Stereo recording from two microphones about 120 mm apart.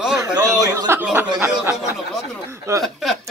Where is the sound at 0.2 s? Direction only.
25° right (ahead or behind).